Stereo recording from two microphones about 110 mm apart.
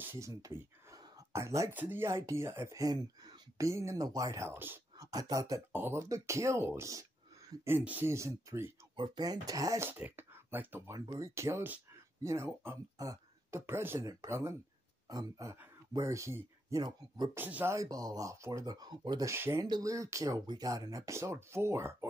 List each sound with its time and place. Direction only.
0.0 s a sound: 20° right (ahead or behind)
0.4 s a sound: 30° right (ahead or behind)
1.7 s speech: 15° right (ahead or behind)
4.9 s speech: 30° right (ahead or behind)
5.7 s speech: 20° right (ahead or behind)
7.6 s speech: 15° right (ahead or behind)
8.9 s speech: 40° right (ahead or behind)
9.8 s speech: 15° right (ahead or behind)
11.1 s speech: 30° right (ahead or behind)
16.8 s speech: 40° right (ahead or behind)
17.4 s speech: 15° right (ahead or behind)
17.7 s speech: 35° right (ahead or behind)
19.3 s speech: 25° right (ahead or behind)